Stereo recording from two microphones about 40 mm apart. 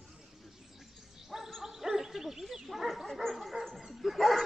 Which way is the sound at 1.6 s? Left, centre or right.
Centre.